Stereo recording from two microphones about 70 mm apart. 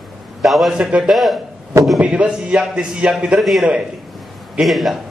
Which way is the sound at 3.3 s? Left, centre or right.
Centre.